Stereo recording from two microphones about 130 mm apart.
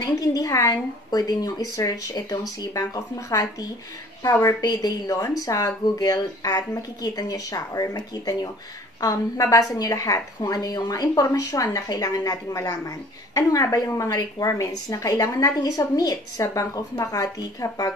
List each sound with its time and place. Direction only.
0.0 s a woman's voice: 30° left (ahead or behind)